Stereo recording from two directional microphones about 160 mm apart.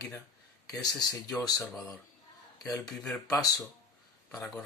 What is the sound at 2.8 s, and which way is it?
Speech, 5° left (ahead or behind).